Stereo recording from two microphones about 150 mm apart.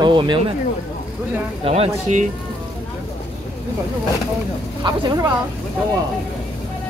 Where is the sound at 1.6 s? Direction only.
40° right (ahead or behind).